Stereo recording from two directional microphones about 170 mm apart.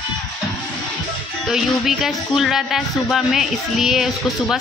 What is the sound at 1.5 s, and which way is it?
Speech, centre (ahead or behind).